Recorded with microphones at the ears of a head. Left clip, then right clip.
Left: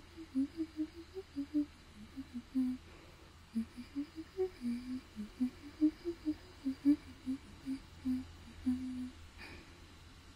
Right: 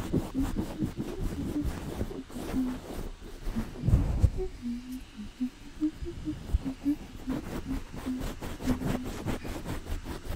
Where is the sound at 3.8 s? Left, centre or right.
Right.